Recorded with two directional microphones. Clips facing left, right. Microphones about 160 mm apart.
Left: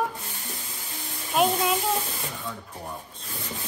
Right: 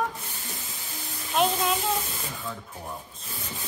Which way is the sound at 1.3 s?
5° left (ahead or behind).